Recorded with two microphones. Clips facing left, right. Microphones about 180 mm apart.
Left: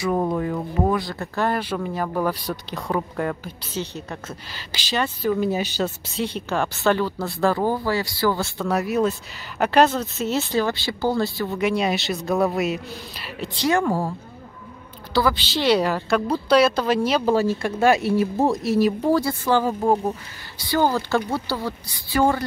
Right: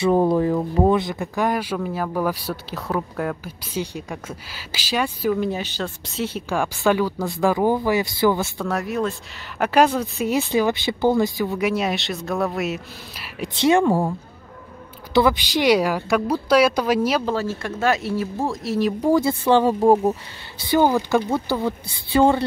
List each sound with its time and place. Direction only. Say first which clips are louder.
0.0 s speech: right 5 dB; 30° right (ahead or behind); by 5.4 s 10° right (ahead or behind)
5.4 s speech: left 2 dB; 5° left (ahead or behind); by 8.5 s 20° right (ahead or behind)
8.5 s speech: left 2 dB; centre (ahead or behind)
9.6 s speech: even; 5° right (ahead or behind)
13.6 s a woman's voice: right 4 dB; 25° right (ahead or behind)
15.1 s speech: right 3 dB; 20° right (ahead or behind)
17.2 s speech: left 4 dB; 15° left (ahead or behind)
18.8 s speech: even; 5° left (ahead or behind)
19.0 s a woman's voice: right 2 dB; 20° right (ahead or behind)
20.7 s a woman's voice: right 3 dB; 15° right (ahead or behind)